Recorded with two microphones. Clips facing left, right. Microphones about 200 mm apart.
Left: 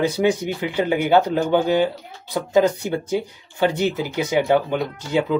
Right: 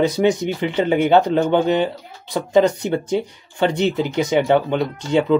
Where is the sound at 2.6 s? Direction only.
10° left (ahead or behind).